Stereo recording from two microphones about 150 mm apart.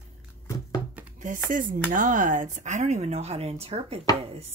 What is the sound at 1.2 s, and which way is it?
Speech, 60° right (ahead or behind).